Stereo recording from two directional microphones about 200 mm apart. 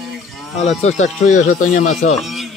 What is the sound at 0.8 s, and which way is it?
Speech, 35° left (ahead or behind).